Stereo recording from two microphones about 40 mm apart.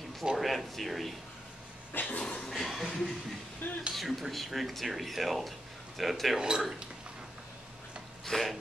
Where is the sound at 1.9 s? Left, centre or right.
Left.